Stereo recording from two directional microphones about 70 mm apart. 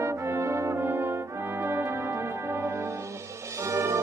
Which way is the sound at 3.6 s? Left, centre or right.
Right.